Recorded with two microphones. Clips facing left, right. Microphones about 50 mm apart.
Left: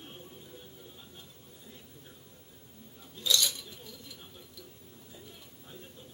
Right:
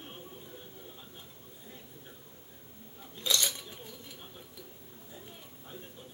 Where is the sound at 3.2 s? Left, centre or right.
Right.